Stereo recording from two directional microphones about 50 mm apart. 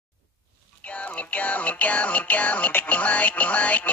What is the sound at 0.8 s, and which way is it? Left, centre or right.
Music, left.